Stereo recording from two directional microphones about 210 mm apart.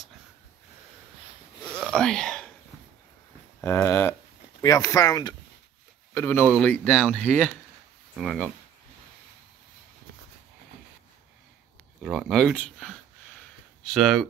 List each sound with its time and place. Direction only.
1.6 s a sound: centre (ahead or behind)
3.6 s speech: 10° left (ahead or behind)
12.0 s speech: centre (ahead or behind)